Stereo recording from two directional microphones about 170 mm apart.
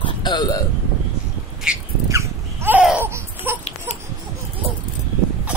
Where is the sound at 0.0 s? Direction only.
25° left (ahead or behind).